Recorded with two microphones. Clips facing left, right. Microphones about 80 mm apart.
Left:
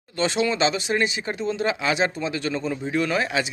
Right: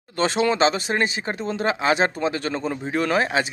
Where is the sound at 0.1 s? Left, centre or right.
Right.